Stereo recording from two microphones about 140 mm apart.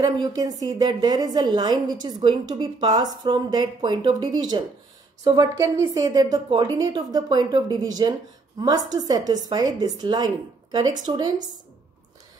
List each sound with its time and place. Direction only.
0.0 s a woman's voice: 30° right (ahead or behind)